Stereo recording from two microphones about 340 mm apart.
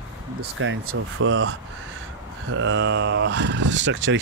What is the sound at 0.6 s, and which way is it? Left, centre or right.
Speech, right.